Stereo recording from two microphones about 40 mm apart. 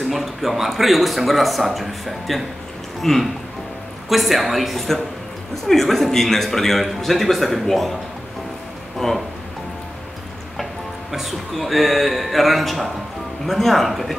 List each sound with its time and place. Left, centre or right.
0.0 s a man's voice: centre
9.0 s speech: centre
10.6 s speech: centre